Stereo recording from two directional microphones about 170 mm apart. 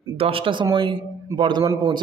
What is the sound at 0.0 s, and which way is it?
A man's voice, 30° right (ahead or behind).